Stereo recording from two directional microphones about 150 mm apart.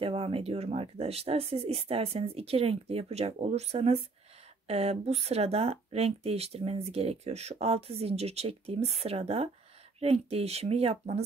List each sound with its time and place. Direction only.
0.0 s speech: 40° right (ahead or behind)